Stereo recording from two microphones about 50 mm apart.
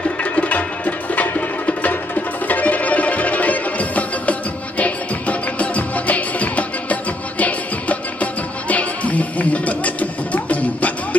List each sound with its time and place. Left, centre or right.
0.2 s music: left